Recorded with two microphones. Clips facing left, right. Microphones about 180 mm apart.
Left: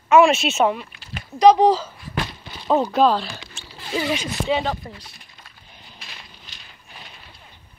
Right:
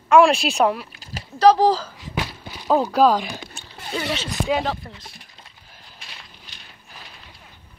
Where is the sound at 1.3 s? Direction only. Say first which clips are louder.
Left 2 dB; 10° left (ahead or behind).